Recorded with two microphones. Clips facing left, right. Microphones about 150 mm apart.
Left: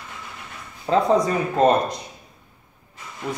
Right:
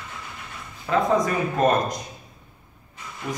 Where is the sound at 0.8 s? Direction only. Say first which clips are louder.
Left 3 dB; 30° left (ahead or behind).